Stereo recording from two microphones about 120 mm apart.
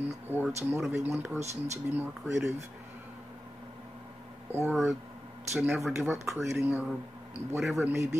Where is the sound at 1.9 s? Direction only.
20° right (ahead or behind).